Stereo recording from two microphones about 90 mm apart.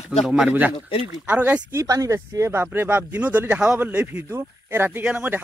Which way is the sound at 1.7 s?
40° right (ahead or behind).